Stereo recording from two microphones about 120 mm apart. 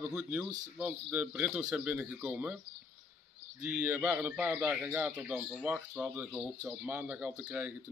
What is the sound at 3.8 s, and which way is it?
Speech, 15° right (ahead or behind).